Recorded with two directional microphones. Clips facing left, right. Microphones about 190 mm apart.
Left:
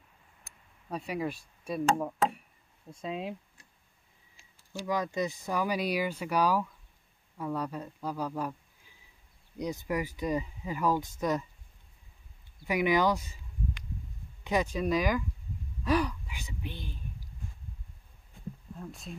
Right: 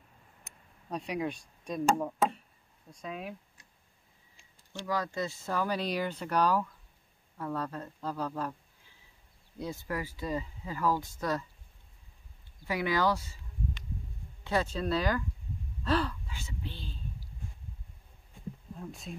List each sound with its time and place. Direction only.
0.8 s speech: 5° left (ahead or behind)
2.9 s speech: 25° left (ahead or behind)
4.7 s speech: 20° left (ahead or behind)
12.6 s speech: 15° left (ahead or behind)
14.4 s speech: 15° left (ahead or behind)
18.8 s speech: centre (ahead or behind)